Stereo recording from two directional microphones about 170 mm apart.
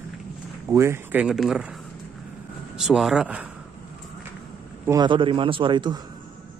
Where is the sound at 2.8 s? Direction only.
5° right (ahead or behind).